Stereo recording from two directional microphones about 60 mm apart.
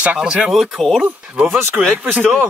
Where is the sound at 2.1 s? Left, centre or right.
Centre.